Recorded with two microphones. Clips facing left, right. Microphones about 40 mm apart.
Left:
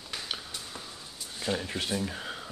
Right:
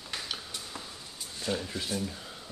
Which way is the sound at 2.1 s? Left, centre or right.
Left.